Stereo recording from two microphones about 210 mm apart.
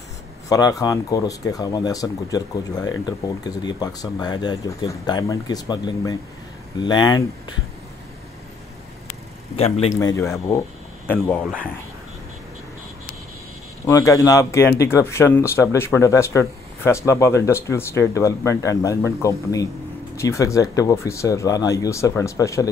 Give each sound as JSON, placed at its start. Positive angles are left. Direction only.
{"t": 0.5, "sound": "speech", "side_deg": 15}
{"t": 9.9, "sound": "speech", "side_deg": 15}
{"t": 13.8, "sound": "speech", "side_deg": 15}